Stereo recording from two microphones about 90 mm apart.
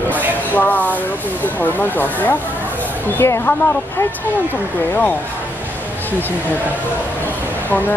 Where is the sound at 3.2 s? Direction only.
25° left (ahead or behind).